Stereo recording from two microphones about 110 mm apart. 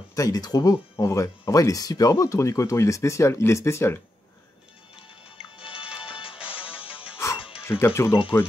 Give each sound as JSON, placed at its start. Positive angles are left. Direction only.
{"t": 0.1, "sound": "speech", "side_deg": 30}
{"t": 6.0, "sound": "music", "side_deg": 50}
{"t": 6.3, "sound": "music", "side_deg": -10}
{"t": 7.2, "sound": "music", "side_deg": 25}
{"t": 7.8, "sound": "speech", "side_deg": 25}